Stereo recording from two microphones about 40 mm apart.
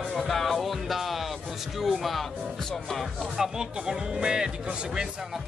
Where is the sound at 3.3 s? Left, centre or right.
Centre.